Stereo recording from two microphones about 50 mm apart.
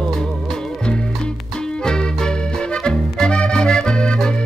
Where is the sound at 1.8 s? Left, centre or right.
Centre.